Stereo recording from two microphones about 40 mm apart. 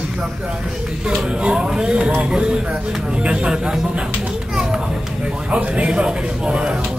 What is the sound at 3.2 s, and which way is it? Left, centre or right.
Speech, right.